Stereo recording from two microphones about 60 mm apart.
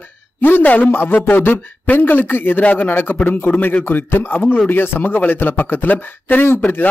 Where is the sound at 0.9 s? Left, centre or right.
Left.